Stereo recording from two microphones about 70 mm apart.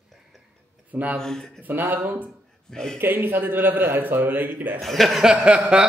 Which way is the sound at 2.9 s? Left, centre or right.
Right.